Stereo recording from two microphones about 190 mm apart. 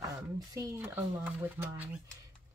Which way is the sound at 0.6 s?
15° right (ahead or behind).